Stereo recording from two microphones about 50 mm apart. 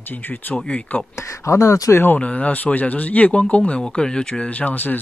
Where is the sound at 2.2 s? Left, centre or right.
Left.